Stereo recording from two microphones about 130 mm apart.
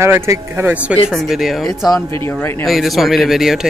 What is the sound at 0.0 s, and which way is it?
Speech, 20° right (ahead or behind).